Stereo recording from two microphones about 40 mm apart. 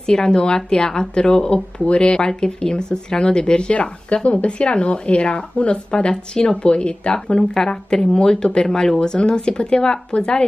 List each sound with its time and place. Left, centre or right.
0.0 s speech: centre
7.3 s speech: centre